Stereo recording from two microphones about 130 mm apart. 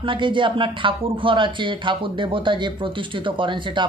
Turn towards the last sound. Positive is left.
turn(degrees=-40)  # may be behind; listen again after turning